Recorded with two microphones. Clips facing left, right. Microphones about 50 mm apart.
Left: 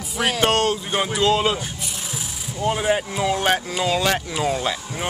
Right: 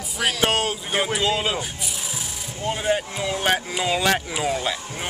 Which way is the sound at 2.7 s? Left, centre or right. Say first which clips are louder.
Left 1 dB; centre.